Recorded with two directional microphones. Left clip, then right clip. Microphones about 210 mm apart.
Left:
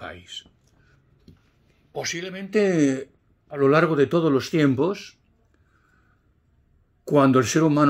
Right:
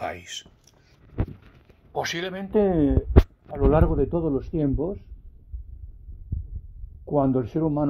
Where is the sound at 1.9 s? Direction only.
30° right (ahead or behind).